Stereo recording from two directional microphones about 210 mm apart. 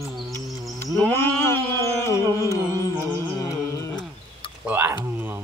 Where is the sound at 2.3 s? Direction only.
15° left (ahead or behind).